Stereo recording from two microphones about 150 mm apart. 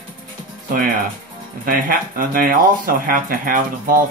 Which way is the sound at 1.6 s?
70° right (ahead or behind).